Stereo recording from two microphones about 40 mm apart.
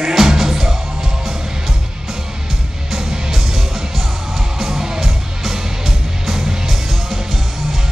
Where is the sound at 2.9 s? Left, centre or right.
Centre.